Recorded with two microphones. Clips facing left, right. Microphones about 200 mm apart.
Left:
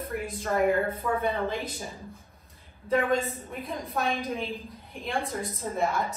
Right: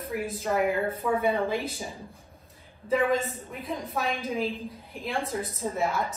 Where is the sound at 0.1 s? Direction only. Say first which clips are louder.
Right 2 dB; centre (ahead or behind).